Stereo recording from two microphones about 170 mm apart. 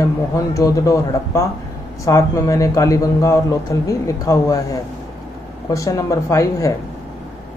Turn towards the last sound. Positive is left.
turn(degrees=20)  # may be behind; listen again after turning